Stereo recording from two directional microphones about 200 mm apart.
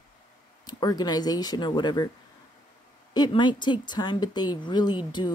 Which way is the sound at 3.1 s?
20° left (ahead or behind).